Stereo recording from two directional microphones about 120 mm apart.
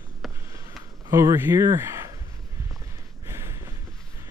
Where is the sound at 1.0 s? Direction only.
25° right (ahead or behind).